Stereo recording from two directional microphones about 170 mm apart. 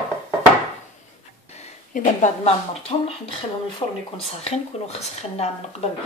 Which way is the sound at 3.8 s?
30° left (ahead or behind).